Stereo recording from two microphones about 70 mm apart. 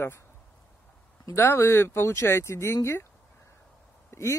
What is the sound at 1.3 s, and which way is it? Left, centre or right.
Speech, left.